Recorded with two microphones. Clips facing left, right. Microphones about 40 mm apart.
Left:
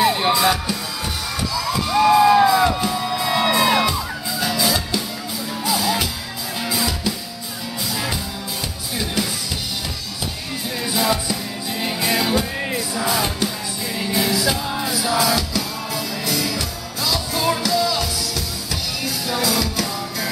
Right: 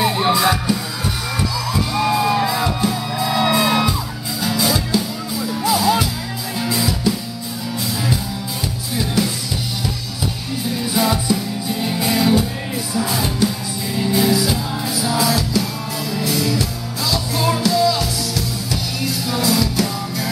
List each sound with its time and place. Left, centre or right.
0.0 s music: centre
8.9 s music: centre
11.0 s music: centre
12.1 s music: centre
14.5 s music: centre
15.0 s music: centre